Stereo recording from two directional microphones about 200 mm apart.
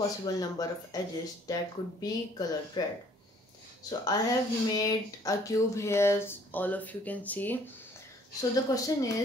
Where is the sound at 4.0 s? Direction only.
20° left (ahead or behind).